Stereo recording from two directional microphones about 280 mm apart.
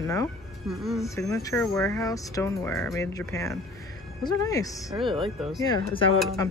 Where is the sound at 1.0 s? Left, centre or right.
Centre.